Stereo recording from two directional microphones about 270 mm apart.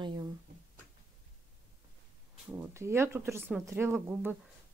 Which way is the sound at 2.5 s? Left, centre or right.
Centre.